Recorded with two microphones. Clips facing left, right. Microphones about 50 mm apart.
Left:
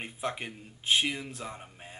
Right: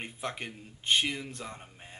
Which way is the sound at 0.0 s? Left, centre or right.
Centre.